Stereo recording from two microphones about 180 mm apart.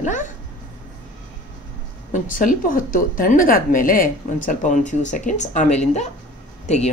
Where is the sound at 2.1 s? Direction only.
45° left (ahead or behind).